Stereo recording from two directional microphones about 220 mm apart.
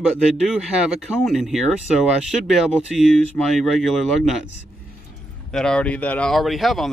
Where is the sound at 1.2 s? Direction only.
Centre (ahead or behind).